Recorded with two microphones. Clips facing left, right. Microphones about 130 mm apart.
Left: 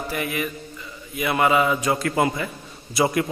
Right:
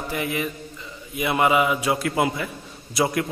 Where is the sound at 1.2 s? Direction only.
20° right (ahead or behind).